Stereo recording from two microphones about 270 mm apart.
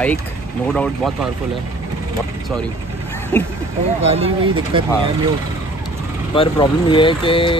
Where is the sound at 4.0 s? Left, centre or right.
Right.